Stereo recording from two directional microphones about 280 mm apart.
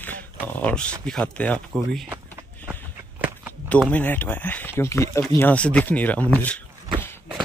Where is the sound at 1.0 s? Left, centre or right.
Centre.